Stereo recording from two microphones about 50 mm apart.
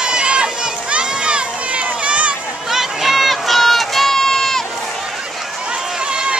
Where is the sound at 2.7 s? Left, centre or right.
Centre.